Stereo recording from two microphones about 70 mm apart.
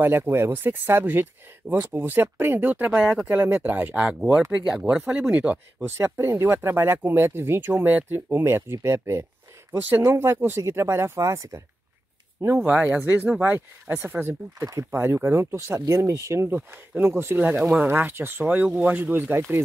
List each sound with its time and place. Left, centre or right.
0.0 s speech: right
5.9 s speech: right
12.5 s speech: centre; by 16.4 s right
16.4 s speech: right